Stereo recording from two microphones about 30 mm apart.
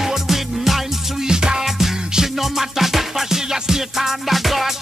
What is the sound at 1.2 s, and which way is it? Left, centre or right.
Music, right.